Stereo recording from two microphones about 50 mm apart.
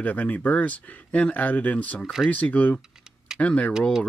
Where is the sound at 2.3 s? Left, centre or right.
Left.